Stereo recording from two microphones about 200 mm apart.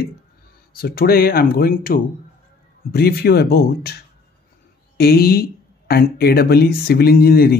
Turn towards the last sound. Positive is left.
turn(degrees=50)  # may be behind; listen again after turning